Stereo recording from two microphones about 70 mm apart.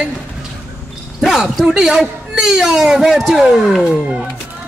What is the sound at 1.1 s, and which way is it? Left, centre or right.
Speech, centre.